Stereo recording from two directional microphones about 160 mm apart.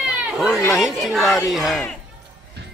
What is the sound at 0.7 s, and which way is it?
Speech, centre (ahead or behind).